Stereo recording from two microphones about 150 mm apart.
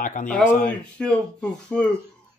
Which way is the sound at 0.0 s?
60° left (ahead or behind).